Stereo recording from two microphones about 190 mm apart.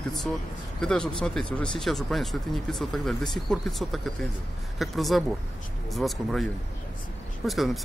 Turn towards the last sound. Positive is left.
turn(degrees=0)  # may be behind; listen again after turning